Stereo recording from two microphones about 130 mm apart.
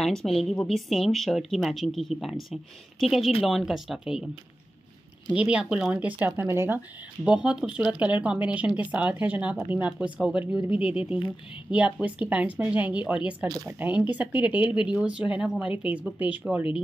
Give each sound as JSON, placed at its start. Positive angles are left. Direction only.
{"t": 0.0, "sound": "speech", "side_deg": 0}
{"t": 5.3, "sound": "speech", "side_deg": -10}
{"t": 7.2, "sound": "speech", "side_deg": -10}